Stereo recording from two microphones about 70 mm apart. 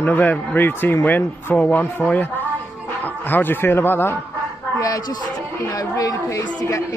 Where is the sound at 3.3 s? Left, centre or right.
Left.